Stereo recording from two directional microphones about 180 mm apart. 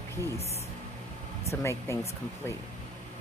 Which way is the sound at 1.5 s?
15° left (ahead or behind).